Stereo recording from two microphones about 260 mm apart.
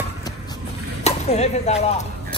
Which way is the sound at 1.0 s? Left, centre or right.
Left.